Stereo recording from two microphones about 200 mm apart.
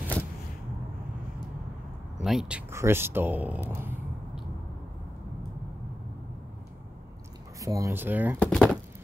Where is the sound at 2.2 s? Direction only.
Centre (ahead or behind).